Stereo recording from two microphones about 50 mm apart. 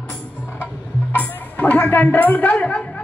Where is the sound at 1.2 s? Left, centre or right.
Left.